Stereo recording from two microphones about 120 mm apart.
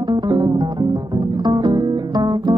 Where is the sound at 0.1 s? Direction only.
35° right (ahead or behind).